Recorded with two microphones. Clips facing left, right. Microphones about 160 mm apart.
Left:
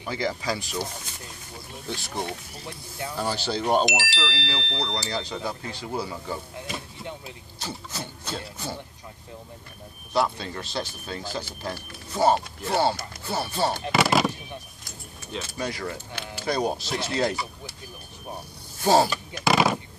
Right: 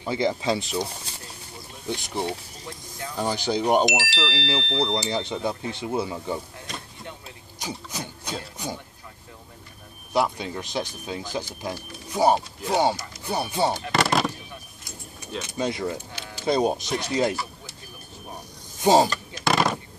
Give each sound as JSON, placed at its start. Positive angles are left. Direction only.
{"t": 0.0, "sound": "speech", "side_deg": -25}
{"t": 1.9, "sound": "speech", "side_deg": -20}
{"t": 6.7, "sound": "chop", "side_deg": 5}
{"t": 7.5, "sound": "speech", "side_deg": -15}
{"t": 10.1, "sound": "speech", "side_deg": -15}
{"t": 13.9, "sound": "a sound", "side_deg": 0}
{"t": 15.4, "sound": "speech", "side_deg": -20}
{"t": 18.8, "sound": "speech", "side_deg": -20}
{"t": 19.4, "sound": "a sound", "side_deg": 5}